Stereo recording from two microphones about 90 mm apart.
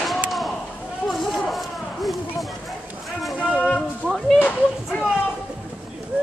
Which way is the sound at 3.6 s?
10° left (ahead or behind).